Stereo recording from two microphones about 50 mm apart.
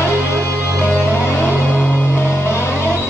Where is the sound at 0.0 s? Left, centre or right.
Left.